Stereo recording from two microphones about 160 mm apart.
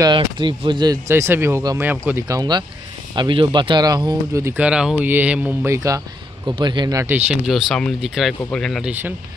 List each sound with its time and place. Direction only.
0.0 s speech: 30° right (ahead or behind); by 2.2 s 10° right (ahead or behind)
2.2 s speech: 25° right (ahead or behind)
6.4 s speech: 30° right (ahead or behind); by 8.9 s centre (ahead or behind)